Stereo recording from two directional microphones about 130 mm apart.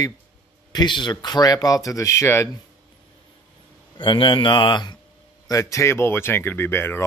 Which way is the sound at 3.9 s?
35° left (ahead or behind).